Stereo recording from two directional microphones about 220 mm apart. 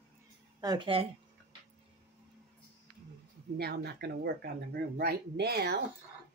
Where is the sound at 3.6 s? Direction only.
45° right (ahead or behind).